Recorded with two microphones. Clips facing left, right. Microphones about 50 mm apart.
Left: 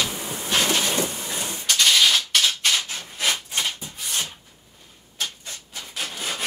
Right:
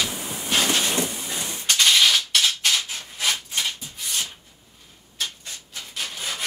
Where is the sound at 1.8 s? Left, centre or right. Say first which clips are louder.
Even; centre.